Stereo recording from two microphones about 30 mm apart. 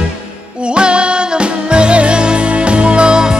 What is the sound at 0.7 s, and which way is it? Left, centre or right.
Music, right.